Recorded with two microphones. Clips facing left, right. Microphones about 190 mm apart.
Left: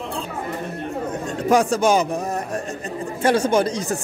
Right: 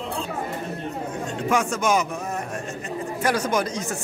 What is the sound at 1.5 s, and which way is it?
Speech, 35° left (ahead or behind).